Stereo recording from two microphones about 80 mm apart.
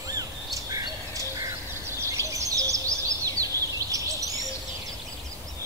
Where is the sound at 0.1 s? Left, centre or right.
Right.